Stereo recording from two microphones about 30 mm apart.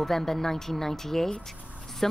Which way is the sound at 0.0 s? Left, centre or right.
Centre.